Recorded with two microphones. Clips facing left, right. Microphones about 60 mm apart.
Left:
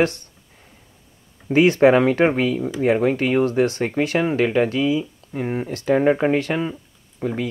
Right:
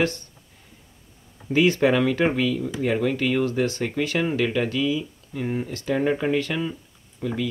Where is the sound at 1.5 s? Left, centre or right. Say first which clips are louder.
Left 5 dB; left.